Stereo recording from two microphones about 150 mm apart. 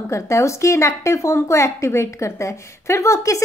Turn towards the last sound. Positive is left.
turn(degrees=20)  # may be behind; listen again after turning